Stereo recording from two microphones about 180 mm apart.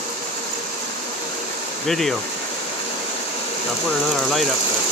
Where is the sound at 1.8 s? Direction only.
Centre (ahead or behind).